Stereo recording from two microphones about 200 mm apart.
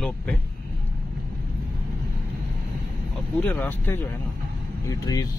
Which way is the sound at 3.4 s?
10° left (ahead or behind).